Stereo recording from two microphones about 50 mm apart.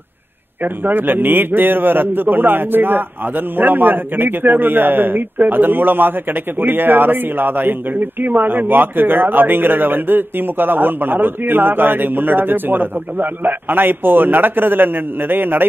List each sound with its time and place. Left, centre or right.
0.8 s a man's voice: right